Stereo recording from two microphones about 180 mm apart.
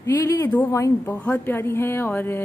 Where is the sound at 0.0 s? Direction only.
15° left (ahead or behind).